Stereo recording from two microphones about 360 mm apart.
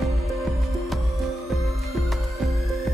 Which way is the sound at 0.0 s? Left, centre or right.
Centre.